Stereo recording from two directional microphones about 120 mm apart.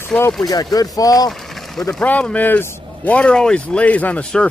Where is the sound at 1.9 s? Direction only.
10° left (ahead or behind).